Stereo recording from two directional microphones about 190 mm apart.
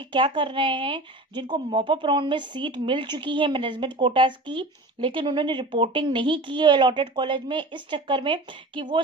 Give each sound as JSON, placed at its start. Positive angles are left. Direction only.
{"t": 0.0, "sound": "a woman's voice", "side_deg": -25}